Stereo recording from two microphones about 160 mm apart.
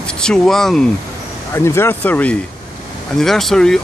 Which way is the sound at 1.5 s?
15° left (ahead or behind).